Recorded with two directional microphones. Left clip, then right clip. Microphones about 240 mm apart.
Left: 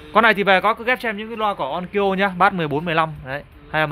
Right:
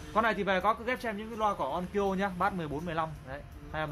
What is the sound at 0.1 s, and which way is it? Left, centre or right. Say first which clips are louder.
A man's voice: left 14 dB; left.